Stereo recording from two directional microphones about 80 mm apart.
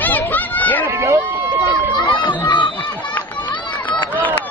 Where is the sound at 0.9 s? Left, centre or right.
Right.